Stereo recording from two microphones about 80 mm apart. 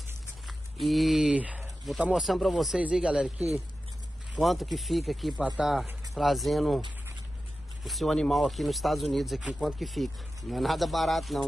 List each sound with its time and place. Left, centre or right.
0.5 s a sound: centre
1.3 s a sound: centre
2.1 s speech: centre
2.8 s speech: centre
4.4 s speech: centre
7.8 s speech: centre
9.8 s speech: centre